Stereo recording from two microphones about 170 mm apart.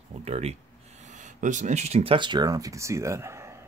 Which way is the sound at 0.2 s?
40° right (ahead or behind).